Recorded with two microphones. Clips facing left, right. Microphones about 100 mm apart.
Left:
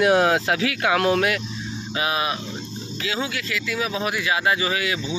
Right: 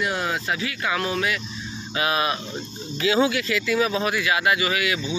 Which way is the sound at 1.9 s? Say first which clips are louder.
Right 1 dB; 20° left (ahead or behind).